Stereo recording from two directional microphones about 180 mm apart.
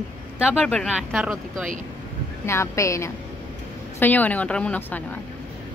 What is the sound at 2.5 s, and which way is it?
A woman's voice, 15° left (ahead or behind).